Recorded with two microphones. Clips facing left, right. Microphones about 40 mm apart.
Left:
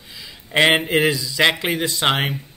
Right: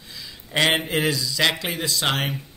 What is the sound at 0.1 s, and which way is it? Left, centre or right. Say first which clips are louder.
Speech: left 5 dB; centre.